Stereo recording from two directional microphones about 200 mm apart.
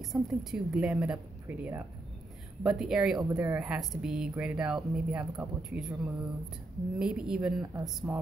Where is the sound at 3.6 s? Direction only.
Centre (ahead or behind).